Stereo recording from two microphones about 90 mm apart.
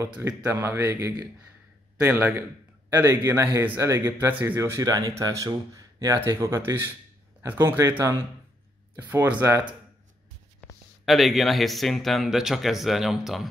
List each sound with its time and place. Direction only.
0.3 s speech: 15° right (ahead or behind)
0.6 s speech: 25° right (ahead or behind)
4.6 s speech: 40° right (ahead or behind); by 9.6 s 25° right (ahead or behind)
11.1 s speech: centre (ahead or behind)